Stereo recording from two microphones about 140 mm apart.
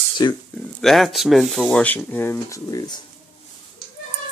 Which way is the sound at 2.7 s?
30° left (ahead or behind).